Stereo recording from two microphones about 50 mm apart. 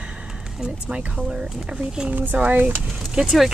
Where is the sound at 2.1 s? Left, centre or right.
Right.